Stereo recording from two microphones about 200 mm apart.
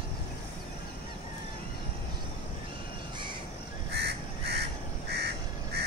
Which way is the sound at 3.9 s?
55° right (ahead or behind).